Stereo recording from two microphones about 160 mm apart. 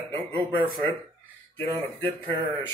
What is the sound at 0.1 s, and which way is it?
Speech, 10° left (ahead or behind).